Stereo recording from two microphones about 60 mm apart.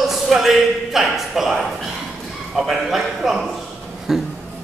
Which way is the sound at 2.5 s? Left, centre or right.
Centre.